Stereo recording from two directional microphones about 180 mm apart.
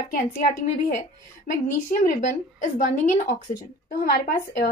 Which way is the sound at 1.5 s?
50° left (ahead or behind).